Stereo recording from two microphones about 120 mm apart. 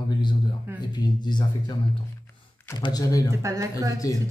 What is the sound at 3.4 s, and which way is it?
Speech, 25° right (ahead or behind).